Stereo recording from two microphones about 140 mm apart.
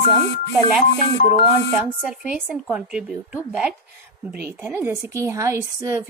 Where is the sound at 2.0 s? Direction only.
10° right (ahead or behind).